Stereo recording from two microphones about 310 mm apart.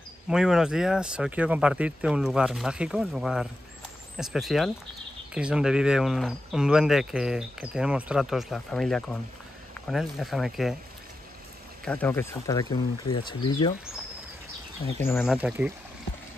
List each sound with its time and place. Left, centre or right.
0.3 s speech: centre
11.8 s speech: centre
15.0 s speech: centre